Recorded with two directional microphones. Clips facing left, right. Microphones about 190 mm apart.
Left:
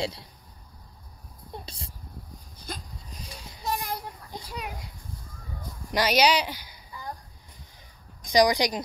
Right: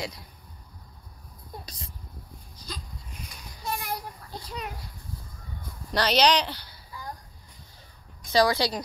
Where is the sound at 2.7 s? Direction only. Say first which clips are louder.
Left 2 dB; 55° left (ahead or behind).